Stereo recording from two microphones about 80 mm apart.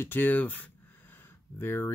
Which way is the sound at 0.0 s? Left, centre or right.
Left.